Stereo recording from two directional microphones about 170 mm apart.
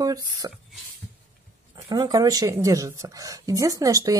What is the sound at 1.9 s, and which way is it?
Speech, 25° right (ahead or behind).